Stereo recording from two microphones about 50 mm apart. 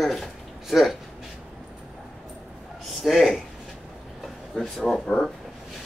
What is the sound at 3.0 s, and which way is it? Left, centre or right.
Speech, centre.